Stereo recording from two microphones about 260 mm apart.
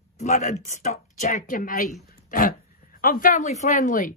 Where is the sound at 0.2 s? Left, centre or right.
Left.